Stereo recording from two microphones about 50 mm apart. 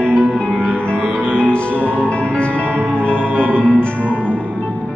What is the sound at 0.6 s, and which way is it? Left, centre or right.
Music, left.